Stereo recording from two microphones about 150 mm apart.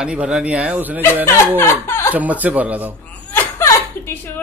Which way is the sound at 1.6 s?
15° left (ahead or behind).